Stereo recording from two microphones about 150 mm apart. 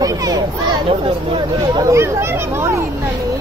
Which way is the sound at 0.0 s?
25° right (ahead or behind).